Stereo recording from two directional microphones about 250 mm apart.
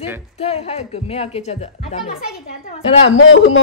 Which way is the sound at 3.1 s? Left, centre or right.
Left.